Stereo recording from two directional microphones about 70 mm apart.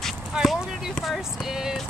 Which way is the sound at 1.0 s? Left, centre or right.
Centre.